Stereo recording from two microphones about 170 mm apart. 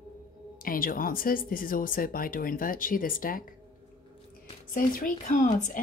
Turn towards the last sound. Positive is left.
turn(degrees=45)  # may be behind; listen again after turning